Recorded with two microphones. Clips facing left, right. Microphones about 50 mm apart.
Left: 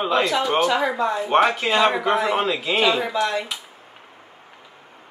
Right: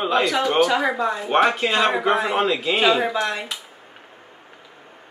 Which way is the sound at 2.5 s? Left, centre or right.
Centre.